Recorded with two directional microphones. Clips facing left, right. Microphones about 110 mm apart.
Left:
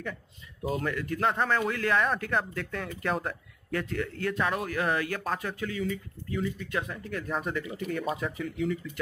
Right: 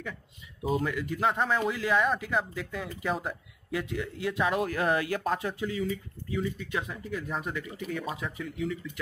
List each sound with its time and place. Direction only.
0.7 s speech: 10° right (ahead or behind)
4.5 s speech: 25° right (ahead or behind)
6.7 s speech: 10° right (ahead or behind)